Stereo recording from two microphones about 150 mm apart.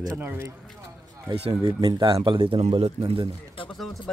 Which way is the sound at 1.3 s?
40° right (ahead or behind).